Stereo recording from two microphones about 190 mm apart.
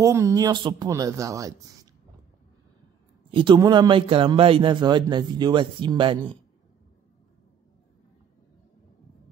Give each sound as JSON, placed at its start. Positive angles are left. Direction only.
{"t": 0.0, "sound": "speech", "side_deg": -15}
{"t": 3.3, "sound": "a man's voice", "side_deg": -25}